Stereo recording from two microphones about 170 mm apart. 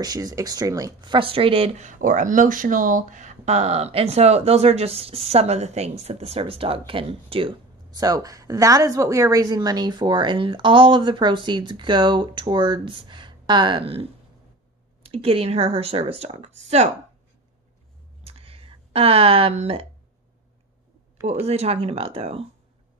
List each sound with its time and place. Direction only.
0.0 s speech: 20° right (ahead or behind)
1.9 s speech: 50° right (ahead or behind); by 14.0 s 30° right (ahead or behind)
15.0 s speech: 35° right (ahead or behind)
18.2 s a sound: 35° right (ahead or behind)
21.5 s speech: 35° right (ahead or behind)